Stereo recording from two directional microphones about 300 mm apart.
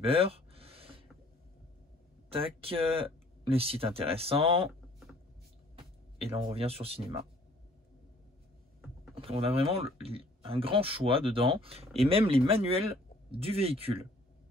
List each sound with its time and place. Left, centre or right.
0.0 s a sound: centre
2.2 s speech: centre
6.2 s speech: centre
9.1 s speech: centre